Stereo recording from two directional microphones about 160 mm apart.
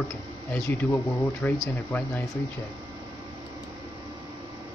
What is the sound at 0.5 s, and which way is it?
Speech, 15° left (ahead or behind).